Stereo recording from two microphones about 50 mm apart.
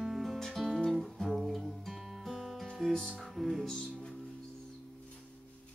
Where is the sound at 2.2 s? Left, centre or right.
Centre.